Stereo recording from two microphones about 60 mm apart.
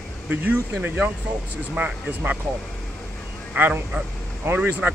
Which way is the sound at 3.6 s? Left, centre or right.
Right.